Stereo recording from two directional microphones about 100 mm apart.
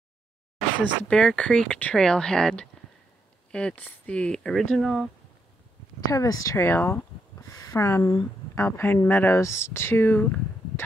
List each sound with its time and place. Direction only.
1.0 s speech: 10° left (ahead or behind)
6.0 s speech: 35° left (ahead or behind); by 7.1 s 20° left (ahead or behind)
7.5 s speech: 35° left (ahead or behind); by 10.4 s 20° left (ahead or behind)